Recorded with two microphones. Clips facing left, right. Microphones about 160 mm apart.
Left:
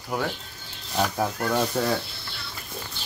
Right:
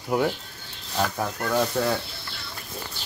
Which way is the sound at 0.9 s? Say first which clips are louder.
Left 1 dB; 15° left (ahead or behind).